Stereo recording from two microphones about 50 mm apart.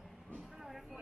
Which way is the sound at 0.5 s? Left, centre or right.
Centre.